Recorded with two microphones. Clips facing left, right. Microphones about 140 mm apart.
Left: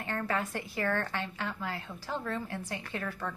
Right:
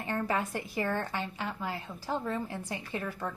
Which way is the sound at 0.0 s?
15° right (ahead or behind).